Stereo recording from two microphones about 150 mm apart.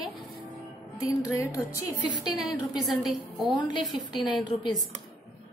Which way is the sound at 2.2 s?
Centre (ahead or behind).